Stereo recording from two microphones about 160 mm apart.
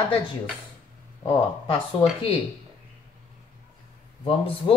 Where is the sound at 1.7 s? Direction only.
35° left (ahead or behind).